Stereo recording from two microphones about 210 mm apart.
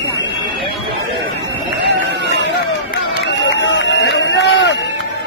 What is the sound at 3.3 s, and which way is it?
Run, 60° left (ahead or behind).